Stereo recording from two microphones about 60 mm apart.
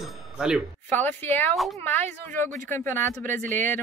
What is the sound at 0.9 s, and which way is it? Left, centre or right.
Speech, left.